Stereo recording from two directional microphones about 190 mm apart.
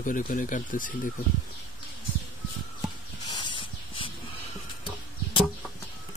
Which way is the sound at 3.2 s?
25° left (ahead or behind).